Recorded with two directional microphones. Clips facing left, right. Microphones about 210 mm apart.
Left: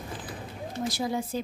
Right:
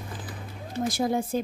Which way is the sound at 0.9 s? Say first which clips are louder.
Right 5 dB; 50° right (ahead or behind).